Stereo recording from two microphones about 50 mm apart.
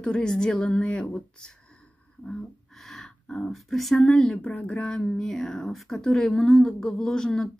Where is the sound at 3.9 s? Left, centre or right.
Left.